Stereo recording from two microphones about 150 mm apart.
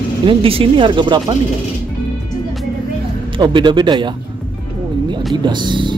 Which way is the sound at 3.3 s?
30° right (ahead or behind).